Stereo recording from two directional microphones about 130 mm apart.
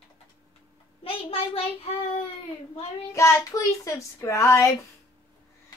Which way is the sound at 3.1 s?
25° left (ahead or behind).